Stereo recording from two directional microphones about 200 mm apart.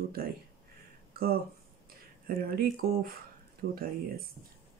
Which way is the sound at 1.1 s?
50° right (ahead or behind).